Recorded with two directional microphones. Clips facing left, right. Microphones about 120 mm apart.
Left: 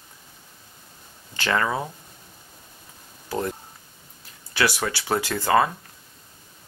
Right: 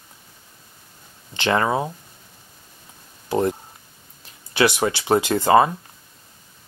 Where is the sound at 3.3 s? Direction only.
25° right (ahead or behind).